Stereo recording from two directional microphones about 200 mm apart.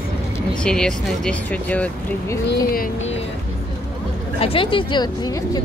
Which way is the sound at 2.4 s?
45° left (ahead or behind).